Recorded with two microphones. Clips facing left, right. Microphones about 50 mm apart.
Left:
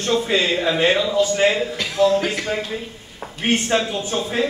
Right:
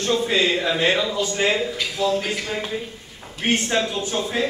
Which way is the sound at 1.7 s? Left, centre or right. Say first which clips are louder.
Left 5 dB; left.